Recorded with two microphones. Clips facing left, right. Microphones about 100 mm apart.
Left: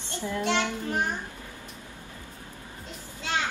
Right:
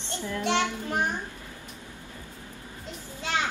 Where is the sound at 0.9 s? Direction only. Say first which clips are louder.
Even; 20° right (ahead or behind).